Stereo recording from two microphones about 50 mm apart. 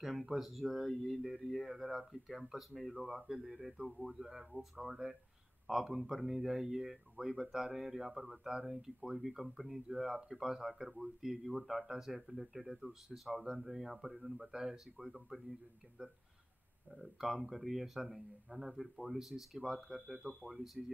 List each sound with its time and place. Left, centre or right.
0.0 s speech: centre
16.9 s speech: centre